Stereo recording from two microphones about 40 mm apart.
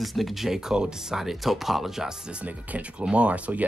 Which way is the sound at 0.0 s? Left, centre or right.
Centre.